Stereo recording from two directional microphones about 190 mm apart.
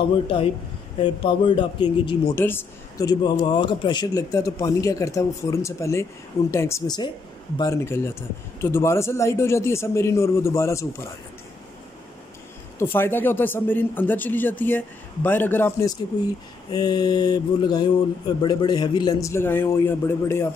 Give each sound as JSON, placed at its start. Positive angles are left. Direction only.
{"t": 0.9, "sound": "speech", "side_deg": 25}
{"t": 2.3, "sound": "a man's voice", "side_deg": 10}
{"t": 12.7, "sound": "a man's voice", "side_deg": 10}